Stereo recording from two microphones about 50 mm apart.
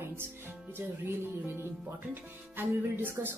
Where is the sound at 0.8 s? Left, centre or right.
Right.